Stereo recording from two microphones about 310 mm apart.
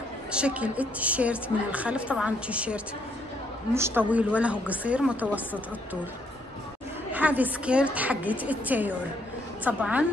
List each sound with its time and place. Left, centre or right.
0.3 s a woman's voice: centre
7.1 s a woman's voice: centre